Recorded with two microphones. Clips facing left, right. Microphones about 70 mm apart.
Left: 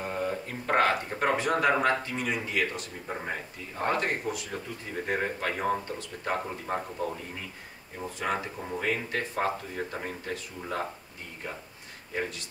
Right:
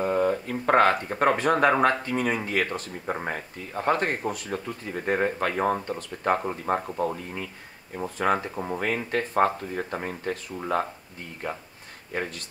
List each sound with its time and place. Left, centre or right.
0.0 s speech: right
8.7 s speech: right